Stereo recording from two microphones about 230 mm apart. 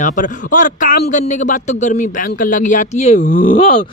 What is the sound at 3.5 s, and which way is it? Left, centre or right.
Groan, left.